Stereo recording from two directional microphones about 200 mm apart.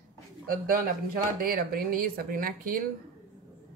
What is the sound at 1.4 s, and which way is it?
A woman's voice, 45° right (ahead or behind).